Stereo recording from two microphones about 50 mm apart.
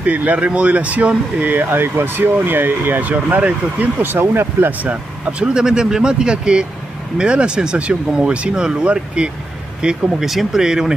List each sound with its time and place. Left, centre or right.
0.0 s speech: right
4.0 s speech: right
4.6 s speech: right
5.4 s speech: centre
10.2 s speech: centre